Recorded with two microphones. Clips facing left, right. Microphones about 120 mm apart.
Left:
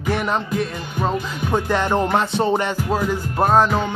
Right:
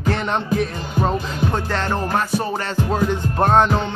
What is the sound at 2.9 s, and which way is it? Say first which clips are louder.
Music: right 2 dB; 5° left (ahead or behind).